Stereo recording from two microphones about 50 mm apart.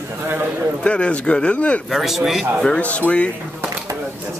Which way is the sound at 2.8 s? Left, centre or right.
Left.